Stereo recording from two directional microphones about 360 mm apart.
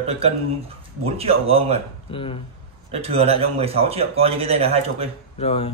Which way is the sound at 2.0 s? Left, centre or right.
Centre.